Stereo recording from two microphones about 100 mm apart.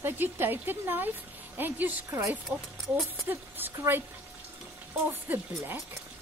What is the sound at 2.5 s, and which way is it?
Speech, centre (ahead or behind).